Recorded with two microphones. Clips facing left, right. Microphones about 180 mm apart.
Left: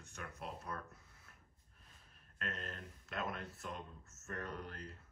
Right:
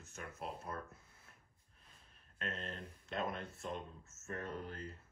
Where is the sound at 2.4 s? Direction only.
Centre (ahead or behind).